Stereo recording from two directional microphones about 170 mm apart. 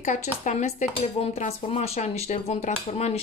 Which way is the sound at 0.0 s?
45° left (ahead or behind).